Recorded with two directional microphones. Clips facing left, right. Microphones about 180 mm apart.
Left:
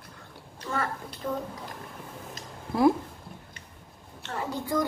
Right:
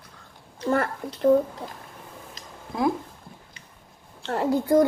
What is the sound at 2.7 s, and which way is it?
Speech, 5° left (ahead or behind).